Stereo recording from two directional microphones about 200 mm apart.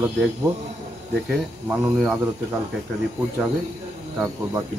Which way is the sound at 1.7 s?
10° right (ahead or behind).